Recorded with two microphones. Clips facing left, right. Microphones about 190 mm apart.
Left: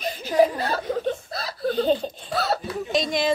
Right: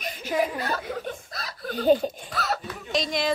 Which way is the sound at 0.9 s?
25° left (ahead or behind).